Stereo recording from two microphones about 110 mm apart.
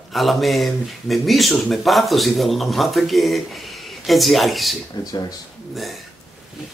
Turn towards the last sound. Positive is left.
turn(degrees=40)  # may be behind; listen again after turning